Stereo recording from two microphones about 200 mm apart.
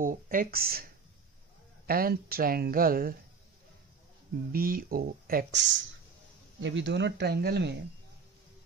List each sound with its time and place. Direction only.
0.0 s speech: 45° right (ahead or behind)
1.9 s speech: 50° right (ahead or behind)
4.5 s speech: 45° right (ahead or behind)